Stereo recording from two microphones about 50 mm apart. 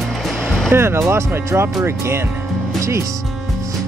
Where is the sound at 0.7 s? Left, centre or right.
Right.